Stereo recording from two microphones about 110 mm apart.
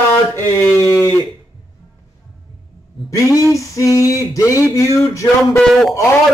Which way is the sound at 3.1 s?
30° left (ahead or behind).